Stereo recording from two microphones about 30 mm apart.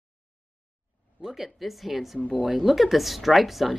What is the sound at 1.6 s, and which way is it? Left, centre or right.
A woman's voice, centre.